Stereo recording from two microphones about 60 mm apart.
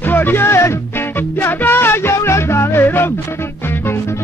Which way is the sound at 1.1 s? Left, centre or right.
Left.